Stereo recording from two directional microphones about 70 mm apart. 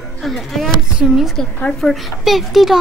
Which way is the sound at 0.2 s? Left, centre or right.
Centre.